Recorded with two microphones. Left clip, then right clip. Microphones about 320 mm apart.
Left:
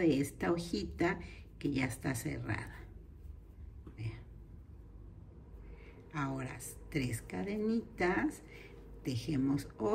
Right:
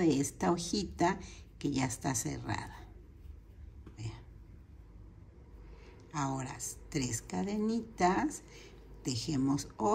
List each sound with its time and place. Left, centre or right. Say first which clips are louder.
0.0 s speech: right 2 dB; centre
3.9 s a sound: right 1 dB; centre
6.1 s speech: right 3 dB; centre